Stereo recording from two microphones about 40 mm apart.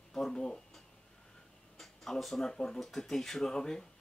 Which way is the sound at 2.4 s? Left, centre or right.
Centre.